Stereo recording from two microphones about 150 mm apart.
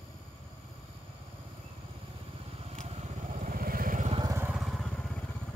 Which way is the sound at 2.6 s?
45° right (ahead or behind).